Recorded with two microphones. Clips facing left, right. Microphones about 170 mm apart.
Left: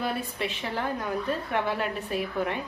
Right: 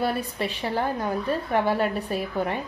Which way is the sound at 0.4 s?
35° right (ahead or behind).